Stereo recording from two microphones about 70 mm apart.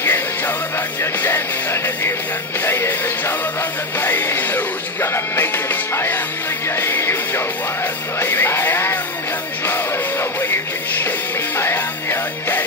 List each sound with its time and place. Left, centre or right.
0.0 s music: left